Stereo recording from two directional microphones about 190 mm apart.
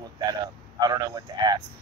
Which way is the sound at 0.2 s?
20° right (ahead or behind).